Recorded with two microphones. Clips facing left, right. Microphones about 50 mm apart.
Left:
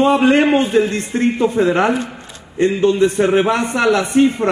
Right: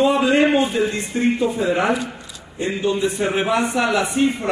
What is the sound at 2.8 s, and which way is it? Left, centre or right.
Speech, centre.